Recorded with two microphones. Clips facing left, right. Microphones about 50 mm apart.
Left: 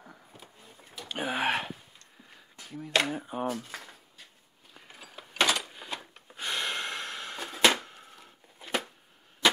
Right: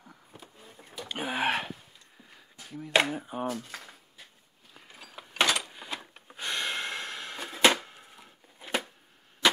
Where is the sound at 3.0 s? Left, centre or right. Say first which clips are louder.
Left 1 dB; centre.